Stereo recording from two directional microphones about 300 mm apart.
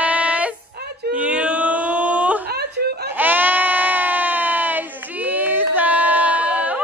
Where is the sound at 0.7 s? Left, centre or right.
Right.